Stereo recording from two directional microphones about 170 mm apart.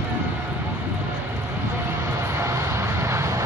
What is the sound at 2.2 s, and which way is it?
Vehicle, 15° right (ahead or behind).